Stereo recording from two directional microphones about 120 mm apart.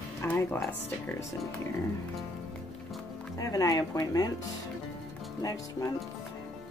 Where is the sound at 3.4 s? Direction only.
30° left (ahead or behind).